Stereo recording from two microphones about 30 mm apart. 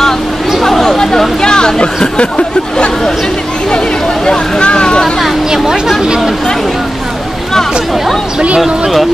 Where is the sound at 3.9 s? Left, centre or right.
Centre.